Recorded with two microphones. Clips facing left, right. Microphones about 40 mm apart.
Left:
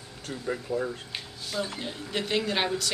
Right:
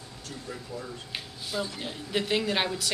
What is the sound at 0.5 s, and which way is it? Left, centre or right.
Speech, left.